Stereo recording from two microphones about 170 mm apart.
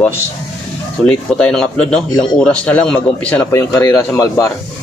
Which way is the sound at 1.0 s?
5° left (ahead or behind).